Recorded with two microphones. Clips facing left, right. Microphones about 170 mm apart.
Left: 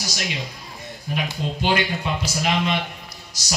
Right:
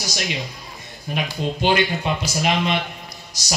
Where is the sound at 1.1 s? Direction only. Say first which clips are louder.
Right 2 dB; 20° right (ahead or behind).